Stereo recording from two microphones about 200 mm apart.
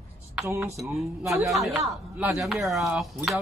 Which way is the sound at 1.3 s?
Centre (ahead or behind).